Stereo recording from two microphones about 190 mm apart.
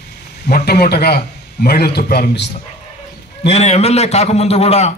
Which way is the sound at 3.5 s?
35° left (ahead or behind).